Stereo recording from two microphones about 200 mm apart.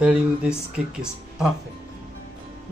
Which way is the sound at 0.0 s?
5° right (ahead or behind).